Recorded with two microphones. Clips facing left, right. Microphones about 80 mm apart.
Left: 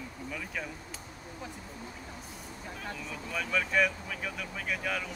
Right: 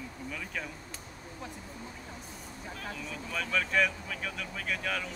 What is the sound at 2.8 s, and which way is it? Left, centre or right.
Speech, centre.